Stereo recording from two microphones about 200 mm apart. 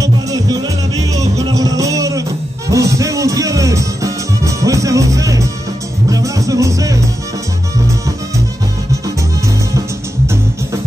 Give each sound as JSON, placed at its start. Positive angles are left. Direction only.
{"t": 0.0, "sound": "music", "side_deg": -20}
{"t": 9.8, "sound": "music", "side_deg": -15}